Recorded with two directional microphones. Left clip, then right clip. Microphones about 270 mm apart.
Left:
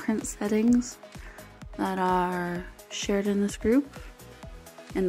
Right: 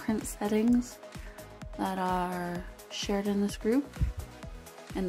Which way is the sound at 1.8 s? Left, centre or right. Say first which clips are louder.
Left 5 dB; centre.